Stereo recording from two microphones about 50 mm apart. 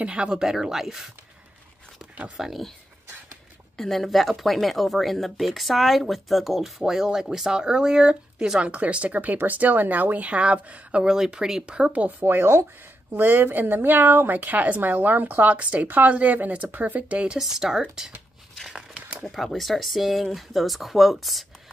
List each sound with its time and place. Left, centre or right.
0.0 s speech: right
2.3 s speech: centre
3.7 s speech: centre
6.8 s speech: centre
13.1 s speech: right
17.4 s speech: centre
18.7 s crumpling: centre
19.2 s speech: centre